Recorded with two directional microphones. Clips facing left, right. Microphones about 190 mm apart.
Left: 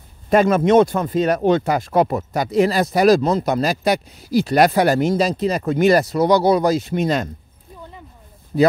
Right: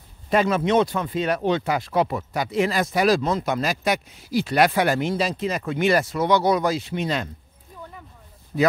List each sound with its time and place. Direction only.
0.3 s speech: 45° left (ahead or behind)